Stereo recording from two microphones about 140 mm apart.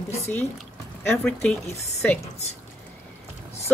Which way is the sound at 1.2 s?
10° left (ahead or behind).